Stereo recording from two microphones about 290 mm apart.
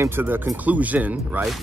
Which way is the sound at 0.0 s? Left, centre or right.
Centre.